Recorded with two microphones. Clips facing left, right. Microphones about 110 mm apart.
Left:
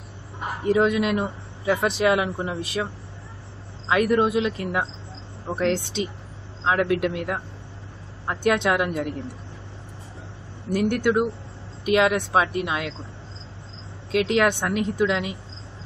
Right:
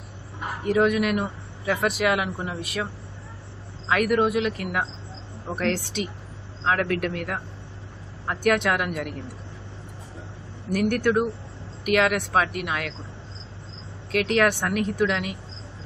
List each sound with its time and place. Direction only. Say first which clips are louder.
0.7 s speech: left 1 dB; 25° left (ahead or behind)
3.9 s speech: left 1 dB; 25° left (ahead or behind)
10.7 s speech: left 1 dB; 25° left (ahead or behind)
14.1 s speech: left 1 dB; 20° left (ahead or behind)